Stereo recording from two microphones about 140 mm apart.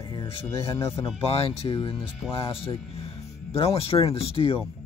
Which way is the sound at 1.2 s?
40° left (ahead or behind).